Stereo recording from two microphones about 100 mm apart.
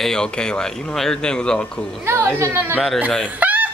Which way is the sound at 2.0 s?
25° right (ahead or behind).